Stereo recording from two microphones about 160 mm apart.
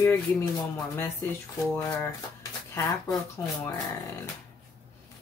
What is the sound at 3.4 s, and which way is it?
Speech, 20° left (ahead or behind).